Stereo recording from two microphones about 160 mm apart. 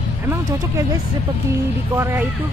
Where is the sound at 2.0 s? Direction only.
15° right (ahead or behind).